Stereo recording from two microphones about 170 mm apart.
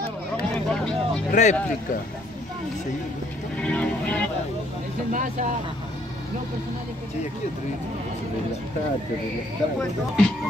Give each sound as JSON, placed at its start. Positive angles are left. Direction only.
{"t": 0.4, "sound": "vehicle", "side_deg": 5}
{"t": 1.3, "sound": "speech", "side_deg": 45}
{"t": 3.6, "sound": "music", "side_deg": 5}
{"t": 5.1, "sound": "speech", "side_deg": -50}
{"t": 9.8, "sound": "speech", "side_deg": 5}